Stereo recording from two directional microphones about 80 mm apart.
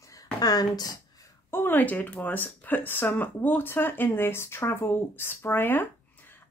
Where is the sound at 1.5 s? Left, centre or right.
Left.